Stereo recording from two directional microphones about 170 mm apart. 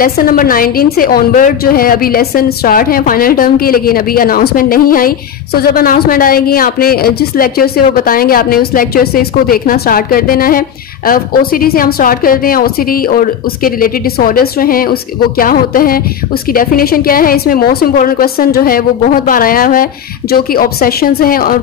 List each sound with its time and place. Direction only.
0.0 s a woman's voice: 60° left (ahead or behind)